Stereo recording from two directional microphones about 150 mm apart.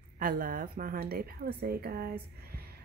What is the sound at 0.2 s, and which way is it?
A woman's voice, 70° right (ahead or behind).